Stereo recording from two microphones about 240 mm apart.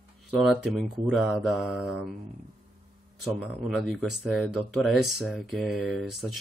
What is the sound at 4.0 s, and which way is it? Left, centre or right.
Speech, centre.